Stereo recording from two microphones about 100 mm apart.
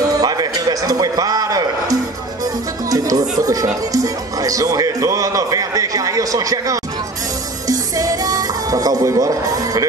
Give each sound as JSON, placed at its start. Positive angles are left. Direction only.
{"t": 0.0, "sound": "a sound", "side_deg": -40}
{"t": 2.4, "sound": "speech", "side_deg": -40}
{"t": 7.6, "sound": "music", "side_deg": -35}